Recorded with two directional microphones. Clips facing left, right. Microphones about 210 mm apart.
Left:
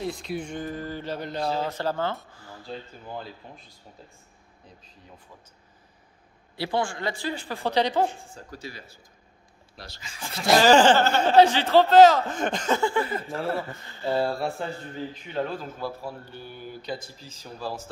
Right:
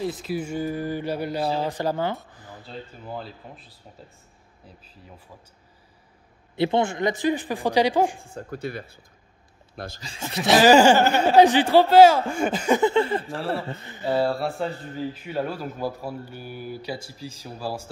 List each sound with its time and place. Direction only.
0.0 s speech: 5° right (ahead or behind)
2.3 s a sound: 20° right (ahead or behind)
3.2 s speech: 5° right (ahead or behind)
6.5 s speech: 20° right (ahead or behind)
8.4 s speech: 55° right (ahead or behind)
10.0 s a man's voice: 25° right (ahead or behind)
10.3 s a man's voice: centre (ahead or behind); by 13.7 s 30° right (ahead or behind)
13.8 s speech: 15° right (ahead or behind)
15.1 s speech: 5° right (ahead or behind)